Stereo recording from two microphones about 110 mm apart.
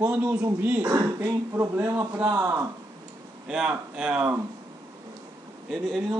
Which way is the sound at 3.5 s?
10° right (ahead or behind).